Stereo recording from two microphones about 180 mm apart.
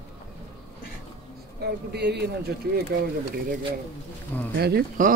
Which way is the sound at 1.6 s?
65° right (ahead or behind).